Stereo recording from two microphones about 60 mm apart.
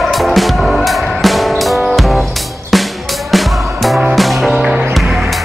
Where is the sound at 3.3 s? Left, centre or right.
Centre.